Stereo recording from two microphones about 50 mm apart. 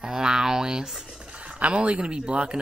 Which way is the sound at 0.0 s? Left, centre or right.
Centre.